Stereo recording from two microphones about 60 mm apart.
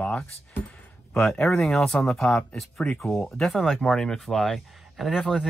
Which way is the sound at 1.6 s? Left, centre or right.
Centre.